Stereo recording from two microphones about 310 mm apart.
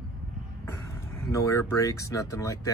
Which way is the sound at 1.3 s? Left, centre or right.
Centre.